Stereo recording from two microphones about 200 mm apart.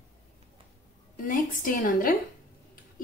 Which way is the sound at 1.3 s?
45° left (ahead or behind).